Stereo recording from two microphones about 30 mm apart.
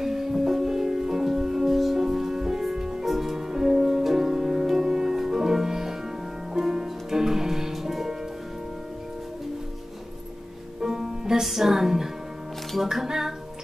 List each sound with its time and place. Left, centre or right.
0.0 s music: centre
3.1 s music: centre
10.8 s music: centre